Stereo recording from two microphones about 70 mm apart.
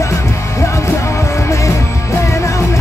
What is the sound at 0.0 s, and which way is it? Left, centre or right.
Music, left.